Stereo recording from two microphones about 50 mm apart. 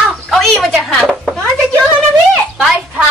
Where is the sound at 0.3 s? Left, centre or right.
Centre.